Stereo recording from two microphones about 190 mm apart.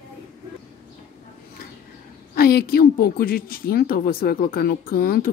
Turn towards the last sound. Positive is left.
turn(degrees=50)  # may be behind; listen again after turning